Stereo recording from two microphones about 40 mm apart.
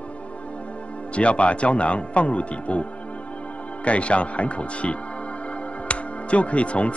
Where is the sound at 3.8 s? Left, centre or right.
Left.